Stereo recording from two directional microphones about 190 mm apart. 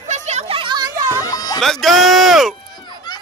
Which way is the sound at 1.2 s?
20° left (ahead or behind).